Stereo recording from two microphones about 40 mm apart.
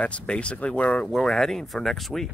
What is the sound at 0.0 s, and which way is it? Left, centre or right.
Speech, left.